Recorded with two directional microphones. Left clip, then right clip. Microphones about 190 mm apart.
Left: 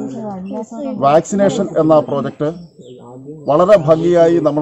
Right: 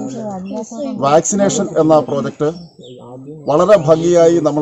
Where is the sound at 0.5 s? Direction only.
15° right (ahead or behind).